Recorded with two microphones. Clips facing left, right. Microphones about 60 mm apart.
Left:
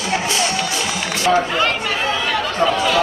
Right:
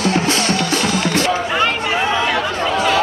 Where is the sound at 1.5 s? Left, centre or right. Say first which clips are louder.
Right 2 dB; centre.